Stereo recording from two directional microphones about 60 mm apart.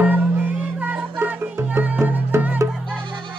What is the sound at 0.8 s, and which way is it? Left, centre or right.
Music, right.